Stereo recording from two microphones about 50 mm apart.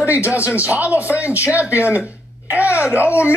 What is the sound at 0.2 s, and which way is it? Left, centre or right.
Speech, right.